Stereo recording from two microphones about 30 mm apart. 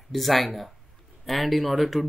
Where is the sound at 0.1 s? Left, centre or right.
Centre.